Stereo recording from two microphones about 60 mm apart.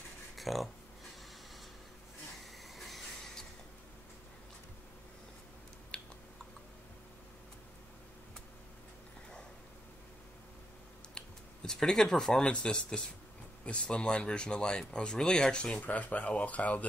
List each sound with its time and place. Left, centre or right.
0.4 s speech: centre
2.7 s a sound: centre
11.1 s speech: centre; by 16.8 s left